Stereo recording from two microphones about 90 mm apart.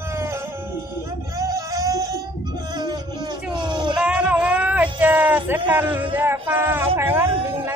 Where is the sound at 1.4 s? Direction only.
40° right (ahead or behind).